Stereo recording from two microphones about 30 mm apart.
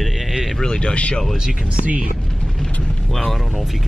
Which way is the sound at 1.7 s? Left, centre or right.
Right.